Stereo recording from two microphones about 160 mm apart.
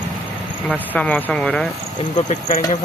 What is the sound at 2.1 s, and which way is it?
Speech, 45° left (ahead or behind).